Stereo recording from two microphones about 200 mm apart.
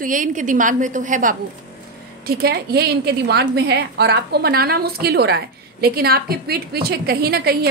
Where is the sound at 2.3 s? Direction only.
50° right (ahead or behind).